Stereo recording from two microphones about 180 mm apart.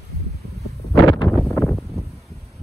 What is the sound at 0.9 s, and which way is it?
Wind noise, 25° left (ahead or behind).